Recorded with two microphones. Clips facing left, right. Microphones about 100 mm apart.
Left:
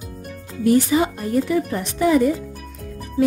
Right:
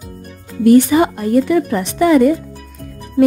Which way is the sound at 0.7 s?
60° right (ahead or behind).